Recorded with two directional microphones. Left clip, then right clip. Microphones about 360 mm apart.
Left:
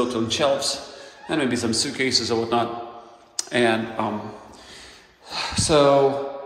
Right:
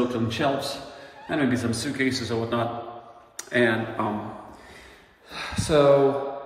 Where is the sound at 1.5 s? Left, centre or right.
Left.